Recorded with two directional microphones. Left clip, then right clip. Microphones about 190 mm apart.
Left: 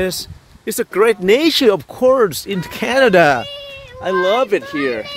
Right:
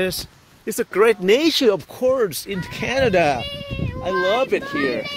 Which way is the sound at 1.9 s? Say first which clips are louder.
Left 6 dB; 25° left (ahead or behind).